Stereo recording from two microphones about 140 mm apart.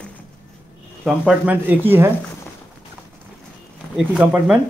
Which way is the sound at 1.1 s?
5° right (ahead or behind).